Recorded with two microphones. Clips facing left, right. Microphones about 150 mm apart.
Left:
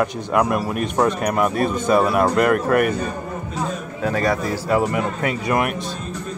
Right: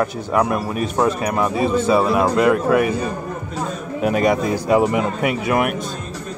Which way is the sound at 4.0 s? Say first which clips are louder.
Right 4 dB; 15° right (ahead or behind).